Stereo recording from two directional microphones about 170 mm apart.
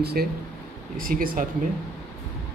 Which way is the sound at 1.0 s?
55° right (ahead or behind).